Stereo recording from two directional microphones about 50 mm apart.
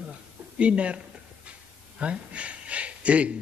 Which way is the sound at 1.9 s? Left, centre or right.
Right.